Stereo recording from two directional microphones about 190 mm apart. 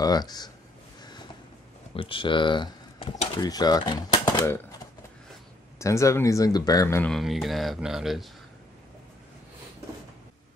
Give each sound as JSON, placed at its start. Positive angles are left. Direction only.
{"t": 0.0, "sound": "speech", "side_deg": 20}
{"t": 2.0, "sound": "speech", "side_deg": 25}
{"t": 5.8, "sound": "speech", "side_deg": 15}
{"t": 7.1, "sound": "speech", "side_deg": 0}